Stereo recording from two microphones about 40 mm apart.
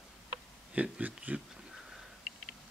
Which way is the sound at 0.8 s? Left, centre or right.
Right.